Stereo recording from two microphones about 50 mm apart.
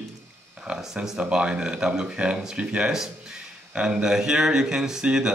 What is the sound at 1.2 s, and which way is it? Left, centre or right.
Speech, right.